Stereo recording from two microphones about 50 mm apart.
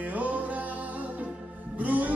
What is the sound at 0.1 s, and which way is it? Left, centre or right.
Music, right.